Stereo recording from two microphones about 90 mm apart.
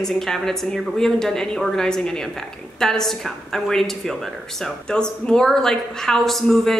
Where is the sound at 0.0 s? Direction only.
5° left (ahead or behind).